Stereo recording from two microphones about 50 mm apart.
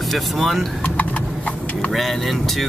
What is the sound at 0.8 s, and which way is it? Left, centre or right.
Clip-clop, left.